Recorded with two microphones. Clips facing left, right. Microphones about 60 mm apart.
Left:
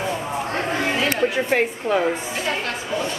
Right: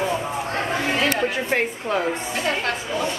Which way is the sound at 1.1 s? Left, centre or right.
Centre.